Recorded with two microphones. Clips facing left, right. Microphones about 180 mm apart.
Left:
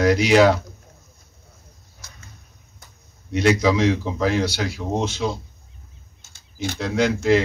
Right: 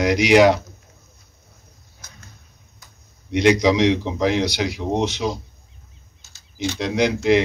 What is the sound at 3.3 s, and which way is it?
Speech, 15° right (ahead or behind).